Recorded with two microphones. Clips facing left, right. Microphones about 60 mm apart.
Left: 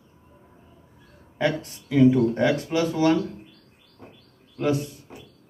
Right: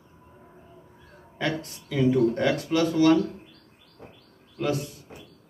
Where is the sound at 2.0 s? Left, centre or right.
Centre.